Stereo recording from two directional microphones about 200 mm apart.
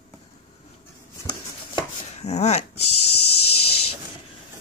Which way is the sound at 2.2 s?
35° left (ahead or behind).